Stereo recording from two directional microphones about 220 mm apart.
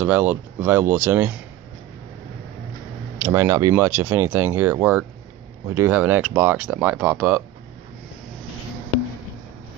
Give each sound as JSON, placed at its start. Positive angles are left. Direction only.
{"t": 0.0, "sound": "speech", "side_deg": -5}
{"t": 3.2, "sound": "speech", "side_deg": -10}